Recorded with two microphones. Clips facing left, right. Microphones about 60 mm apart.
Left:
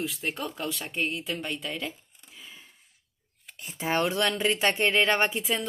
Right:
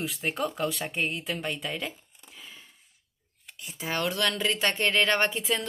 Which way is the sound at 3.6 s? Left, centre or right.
Left.